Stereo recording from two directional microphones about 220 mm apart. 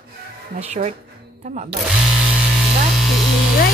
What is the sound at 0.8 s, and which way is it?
Speech, 35° right (ahead or behind).